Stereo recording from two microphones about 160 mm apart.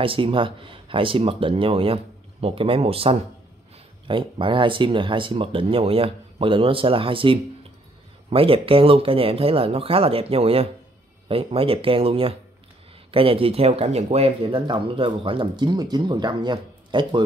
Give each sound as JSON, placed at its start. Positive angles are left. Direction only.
{"t": 0.0, "sound": "speech", "side_deg": -35}